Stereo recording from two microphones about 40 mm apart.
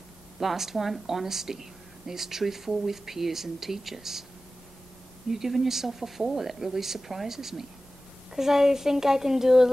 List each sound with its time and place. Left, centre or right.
0.4 s speech: centre
5.3 s speech: centre